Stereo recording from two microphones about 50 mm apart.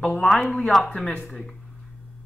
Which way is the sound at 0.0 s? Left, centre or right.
Centre.